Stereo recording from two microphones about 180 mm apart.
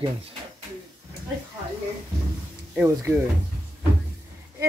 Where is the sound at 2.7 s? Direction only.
15° right (ahead or behind).